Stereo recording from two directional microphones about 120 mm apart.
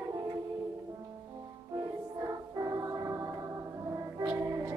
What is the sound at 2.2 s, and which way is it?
Music, 30° right (ahead or behind).